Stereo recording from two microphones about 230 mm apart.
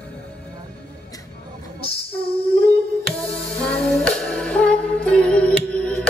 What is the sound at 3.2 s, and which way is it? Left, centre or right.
Music, centre.